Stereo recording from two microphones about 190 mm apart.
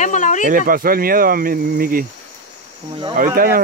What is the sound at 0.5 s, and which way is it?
Speech, 45° right (ahead or behind).